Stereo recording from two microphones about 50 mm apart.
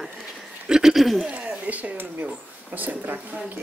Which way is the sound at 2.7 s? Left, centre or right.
Right.